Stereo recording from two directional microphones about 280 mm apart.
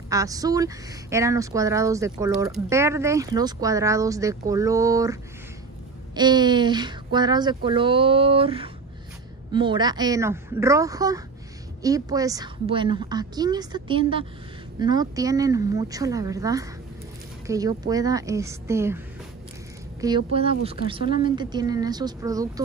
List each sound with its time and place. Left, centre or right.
0.1 s speech: centre
20.0 s speech: centre